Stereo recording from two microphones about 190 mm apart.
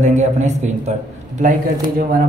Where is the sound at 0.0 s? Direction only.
40° right (ahead or behind).